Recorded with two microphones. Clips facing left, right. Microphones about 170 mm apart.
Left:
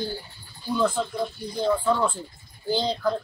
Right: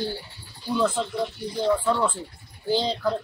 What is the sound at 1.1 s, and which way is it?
Speech, 75° right (ahead or behind).